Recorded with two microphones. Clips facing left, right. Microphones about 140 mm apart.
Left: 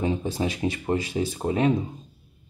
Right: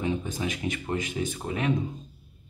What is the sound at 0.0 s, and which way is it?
Speech, 35° left (ahead or behind).